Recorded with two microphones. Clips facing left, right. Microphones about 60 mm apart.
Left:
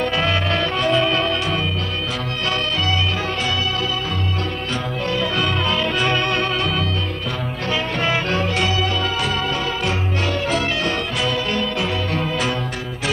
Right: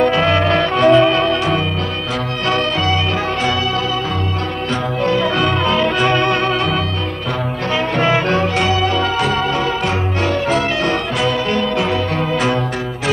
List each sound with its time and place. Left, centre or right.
0.0 s music: right
5.0 s music: right
8.0 s music: right